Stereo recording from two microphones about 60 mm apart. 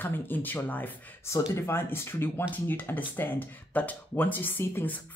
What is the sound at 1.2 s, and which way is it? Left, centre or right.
Speech, left.